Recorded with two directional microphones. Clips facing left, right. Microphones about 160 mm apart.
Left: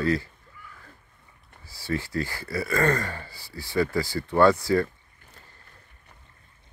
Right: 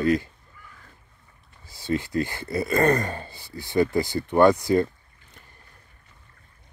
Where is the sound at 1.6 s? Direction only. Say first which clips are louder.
Right 3 dB; 20° right (ahead or behind).